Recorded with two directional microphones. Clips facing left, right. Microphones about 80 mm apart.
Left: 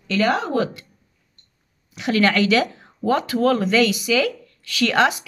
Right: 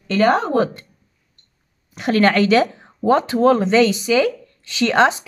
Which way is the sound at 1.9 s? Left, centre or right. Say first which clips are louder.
Right 3 dB; right.